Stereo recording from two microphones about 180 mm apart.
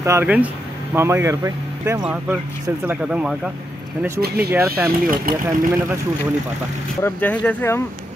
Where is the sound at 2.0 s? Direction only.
5° right (ahead or behind).